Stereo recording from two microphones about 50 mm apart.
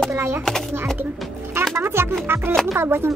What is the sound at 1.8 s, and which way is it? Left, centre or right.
Speech, right.